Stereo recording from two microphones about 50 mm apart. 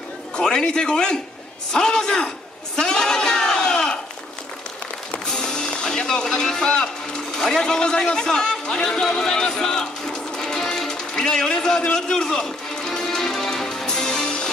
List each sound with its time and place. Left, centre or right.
0.4 s a man's voice: centre
1.7 s a sound: centre
5.2 s music: centre
7.3 s a man's voice: centre
12.4 s music: centre